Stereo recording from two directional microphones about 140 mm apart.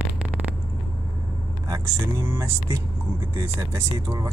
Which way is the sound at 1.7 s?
20° right (ahead or behind).